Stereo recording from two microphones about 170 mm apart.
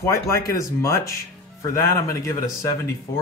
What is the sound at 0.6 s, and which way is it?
Speech, 15° left (ahead or behind).